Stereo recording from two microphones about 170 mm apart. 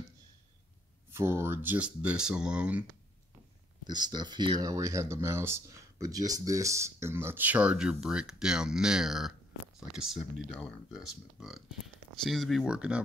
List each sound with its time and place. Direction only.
1.1 s speech: 15° right (ahead or behind)
3.8 s speech: 25° right (ahead or behind); by 13.0 s 5° right (ahead or behind)